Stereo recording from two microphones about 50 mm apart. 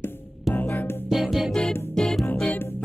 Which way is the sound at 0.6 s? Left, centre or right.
Left.